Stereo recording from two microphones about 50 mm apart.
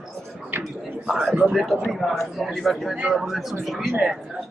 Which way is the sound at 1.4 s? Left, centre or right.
Centre.